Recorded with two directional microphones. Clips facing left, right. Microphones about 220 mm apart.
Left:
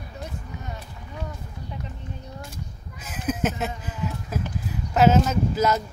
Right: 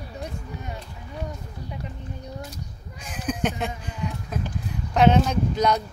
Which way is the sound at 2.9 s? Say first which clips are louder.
Left 1 dB; 5° left (ahead or behind).